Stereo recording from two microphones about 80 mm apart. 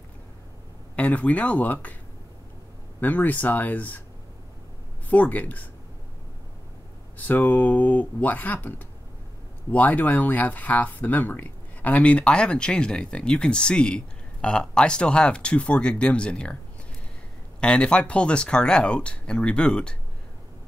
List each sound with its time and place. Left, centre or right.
0.9 s speech: centre
3.0 s speech: left
5.1 s speech: centre
7.2 s speech: left
17.6 s speech: centre